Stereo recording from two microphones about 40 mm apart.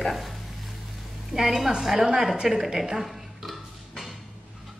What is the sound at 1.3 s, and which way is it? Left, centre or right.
A woman's voice, centre.